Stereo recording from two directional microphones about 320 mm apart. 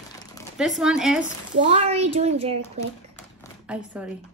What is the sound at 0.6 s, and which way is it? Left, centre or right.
Speech, centre.